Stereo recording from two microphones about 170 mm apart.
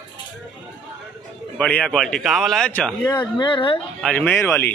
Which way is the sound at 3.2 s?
25° left (ahead or behind).